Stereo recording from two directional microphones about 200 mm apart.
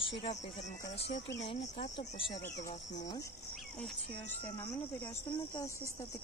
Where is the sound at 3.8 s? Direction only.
10° left (ahead or behind).